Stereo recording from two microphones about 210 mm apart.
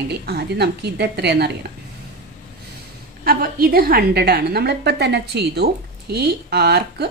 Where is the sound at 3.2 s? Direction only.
45° right (ahead or behind).